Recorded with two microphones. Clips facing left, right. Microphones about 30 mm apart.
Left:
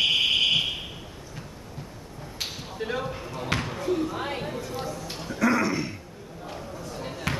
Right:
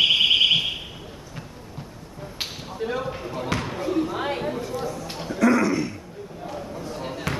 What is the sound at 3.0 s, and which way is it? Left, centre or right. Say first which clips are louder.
Basketball bounce: right 2 dB; centre.